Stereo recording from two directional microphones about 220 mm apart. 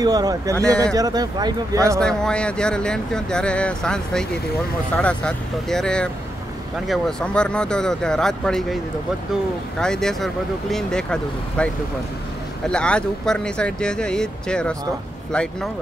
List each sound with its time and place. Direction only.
0.0 s speech: 15° right (ahead or behind)
2.0 s speech: 5° left (ahead or behind)
9.8 s speech: 5° left (ahead or behind)